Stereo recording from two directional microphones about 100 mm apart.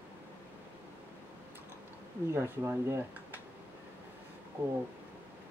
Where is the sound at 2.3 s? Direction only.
25° right (ahead or behind).